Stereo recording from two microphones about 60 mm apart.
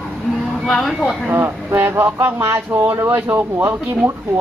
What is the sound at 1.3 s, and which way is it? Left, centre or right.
Speech, right.